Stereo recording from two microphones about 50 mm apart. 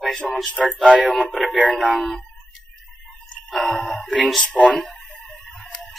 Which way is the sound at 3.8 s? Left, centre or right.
Centre.